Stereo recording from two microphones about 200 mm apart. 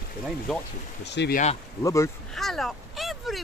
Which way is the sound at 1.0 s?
55° left (ahead or behind).